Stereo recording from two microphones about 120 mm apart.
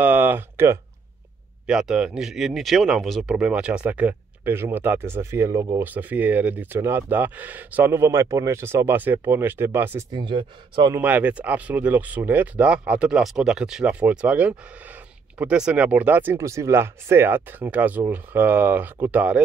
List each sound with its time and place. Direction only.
0.0 s a sound: 15° right (ahead or behind)
1.7 s speech: 5° right (ahead or behind)
10.1 s speech: 40° right (ahead or behind)
11.0 s speech: 15° right (ahead or behind)